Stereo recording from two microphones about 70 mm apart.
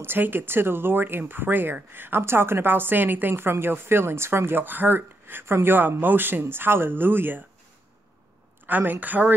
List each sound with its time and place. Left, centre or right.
0.0 s speech: right
8.6 s a woman's voice: right